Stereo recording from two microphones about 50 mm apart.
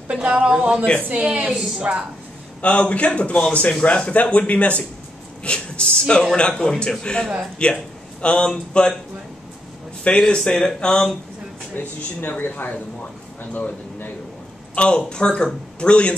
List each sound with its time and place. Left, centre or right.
0.1 s speech: right
1.4 s a woman's voice: centre
2.6 s speech: left
10.0 s speech: centre
11.7 s speech: left
14.8 s speech: left